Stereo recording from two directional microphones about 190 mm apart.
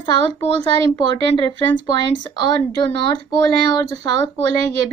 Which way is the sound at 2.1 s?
20° left (ahead or behind).